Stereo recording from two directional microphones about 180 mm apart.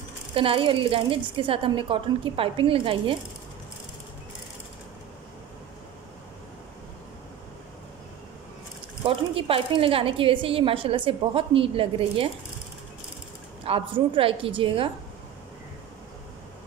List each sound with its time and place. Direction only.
0.3 s a woman's voice: 30° right (ahead or behind)
9.0 s a woman's voice: 30° right (ahead or behind)
13.7 s a woman's voice: 30° right (ahead or behind)